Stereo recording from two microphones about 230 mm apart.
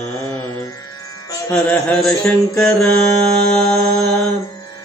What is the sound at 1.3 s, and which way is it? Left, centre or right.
Music, centre.